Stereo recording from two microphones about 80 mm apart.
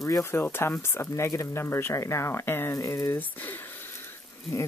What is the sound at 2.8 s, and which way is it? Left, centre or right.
Speech, left.